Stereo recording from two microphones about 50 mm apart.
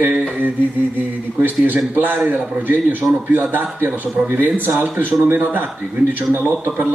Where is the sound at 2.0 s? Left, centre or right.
Right.